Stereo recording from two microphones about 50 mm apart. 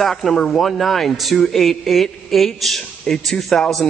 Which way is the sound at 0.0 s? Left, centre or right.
Centre.